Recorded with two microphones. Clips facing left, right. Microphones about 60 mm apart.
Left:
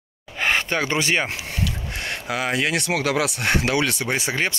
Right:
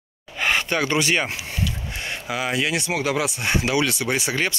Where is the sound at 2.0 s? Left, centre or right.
Left.